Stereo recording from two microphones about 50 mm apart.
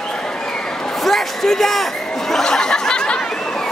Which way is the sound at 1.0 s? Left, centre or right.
Centre.